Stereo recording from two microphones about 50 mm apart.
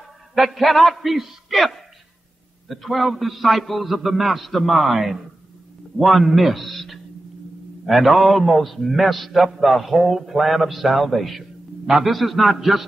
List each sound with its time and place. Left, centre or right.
0.3 s a man's voice: centre